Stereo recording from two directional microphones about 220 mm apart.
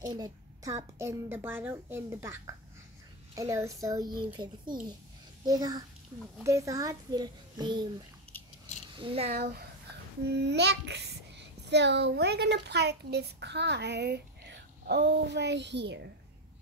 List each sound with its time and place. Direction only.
0.0 s a child's voice: 20° right (ahead or behind)
8.9 s speech: 25° right (ahead or behind)
9.4 s a child's voice: 45° right (ahead or behind)